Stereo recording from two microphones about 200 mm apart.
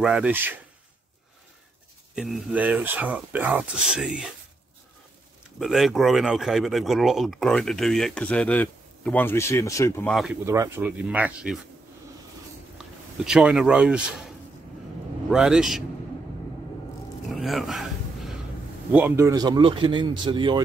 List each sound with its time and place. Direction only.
0.0 s speech: 5° right (ahead or behind)
2.1 s speech: centre (ahead or behind)
5.6 s speech: centre (ahead or behind)
10.4 s speech: 15° right (ahead or behind)
12.7 s speech: 5° right (ahead or behind)
15.3 s speech: 5° right (ahead or behind)
17.3 s a sound: centre (ahead or behind)
18.9 s a man's voice: 10° right (ahead or behind); by 20.6 s 25° right (ahead or behind)